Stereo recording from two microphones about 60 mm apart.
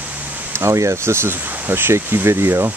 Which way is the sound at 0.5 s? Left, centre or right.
Right.